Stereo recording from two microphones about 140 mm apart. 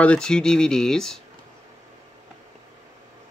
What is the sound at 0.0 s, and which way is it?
Speech, 5° left (ahead or behind).